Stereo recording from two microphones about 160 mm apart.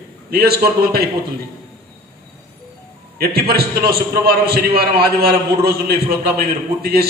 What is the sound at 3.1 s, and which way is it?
A man's voice, 70° right (ahead or behind).